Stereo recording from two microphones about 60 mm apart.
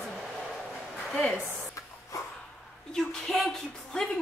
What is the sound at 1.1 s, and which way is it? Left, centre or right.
Speech, centre.